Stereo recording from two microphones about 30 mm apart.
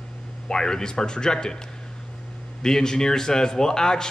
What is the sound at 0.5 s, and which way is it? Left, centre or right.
A man's voice, left.